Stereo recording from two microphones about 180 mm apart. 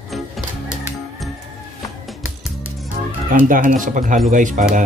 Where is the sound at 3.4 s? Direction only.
50° right (ahead or behind).